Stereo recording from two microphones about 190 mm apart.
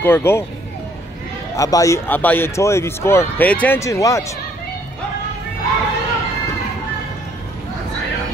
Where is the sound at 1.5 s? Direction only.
15° left (ahead or behind).